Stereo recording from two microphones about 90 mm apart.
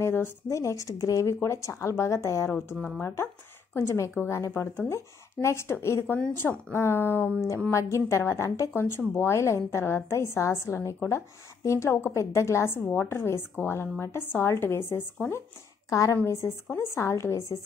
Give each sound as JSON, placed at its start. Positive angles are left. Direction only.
{"t": 0.0, "sound": "a woman's voice", "side_deg": 30}
{"t": 15.9, "sound": "speech", "side_deg": 35}